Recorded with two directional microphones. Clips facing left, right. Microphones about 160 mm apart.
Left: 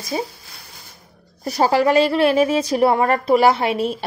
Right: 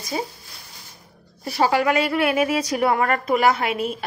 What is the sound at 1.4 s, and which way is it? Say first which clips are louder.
A woman's voice: left 3 dB; 40° left (ahead or behind).